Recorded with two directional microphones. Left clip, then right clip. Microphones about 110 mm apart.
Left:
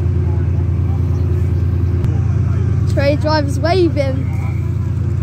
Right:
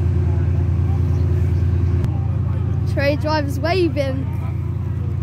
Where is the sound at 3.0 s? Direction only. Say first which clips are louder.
Left 4 dB; 15° right (ahead or behind).